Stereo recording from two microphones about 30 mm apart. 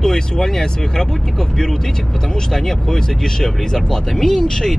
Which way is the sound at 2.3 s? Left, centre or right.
Centre.